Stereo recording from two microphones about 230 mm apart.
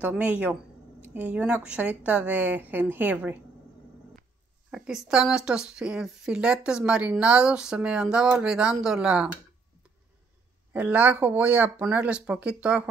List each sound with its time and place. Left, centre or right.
0.0 s a woman's voice: centre
4.6 s speech: centre
10.7 s a woman's voice: centre